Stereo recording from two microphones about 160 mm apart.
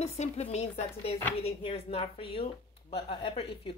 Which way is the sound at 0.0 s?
45° left (ahead or behind).